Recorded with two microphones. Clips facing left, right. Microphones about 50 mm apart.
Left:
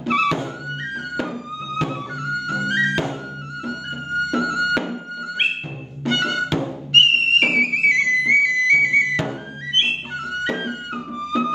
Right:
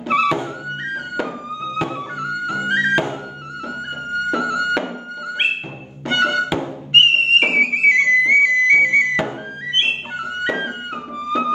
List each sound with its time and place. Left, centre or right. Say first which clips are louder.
0.0 s music: right 2 dB; centre
4.3 s music: right 2 dB; centre
6.0 s music: right 3 dB; centre